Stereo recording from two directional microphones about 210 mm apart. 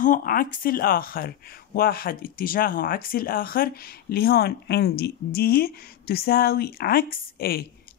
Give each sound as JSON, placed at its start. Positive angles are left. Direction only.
{"t": 0.0, "sound": "speech", "side_deg": 40}